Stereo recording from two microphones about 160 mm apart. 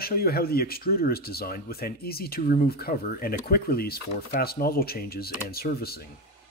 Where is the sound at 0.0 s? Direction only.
70° left (ahead or behind).